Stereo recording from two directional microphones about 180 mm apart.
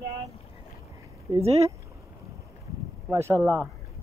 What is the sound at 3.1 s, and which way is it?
Speech, 15° right (ahead or behind).